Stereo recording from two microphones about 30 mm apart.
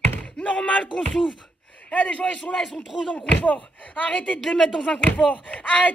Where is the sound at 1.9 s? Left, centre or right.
Left.